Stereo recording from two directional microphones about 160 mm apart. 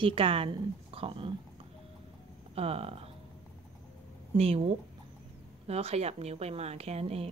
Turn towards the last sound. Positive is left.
turn(degrees=-40)  # may be behind; listen again after turning